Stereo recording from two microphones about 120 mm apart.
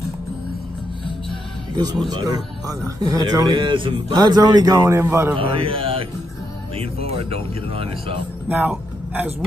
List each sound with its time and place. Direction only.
2.0 s a man's voice: 35° right (ahead or behind)
5.4 s speech: 50° right (ahead or behind)
8.5 s speech: 15° right (ahead or behind)